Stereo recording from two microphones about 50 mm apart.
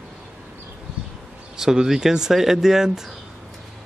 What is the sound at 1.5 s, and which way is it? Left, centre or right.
Speech, centre.